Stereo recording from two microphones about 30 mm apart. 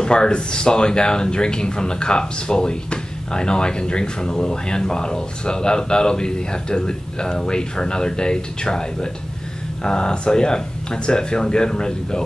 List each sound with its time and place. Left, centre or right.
0.0 s speech: left